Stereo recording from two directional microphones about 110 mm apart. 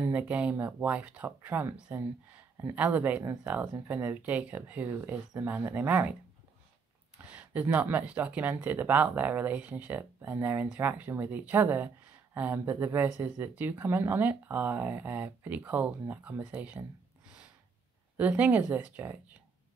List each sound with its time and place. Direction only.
0.0 s speech: 15° right (ahead or behind)
7.2 s a sound: 10° right (ahead or behind)
7.6 s speech: 15° right (ahead or behind)
18.1 s a woman's voice: 15° right (ahead or behind)